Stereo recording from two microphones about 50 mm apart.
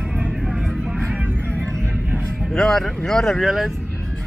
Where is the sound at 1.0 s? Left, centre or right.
Right.